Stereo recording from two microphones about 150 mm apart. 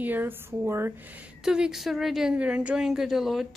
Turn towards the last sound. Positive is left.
turn(degrees=0)  # may be behind; listen again after turning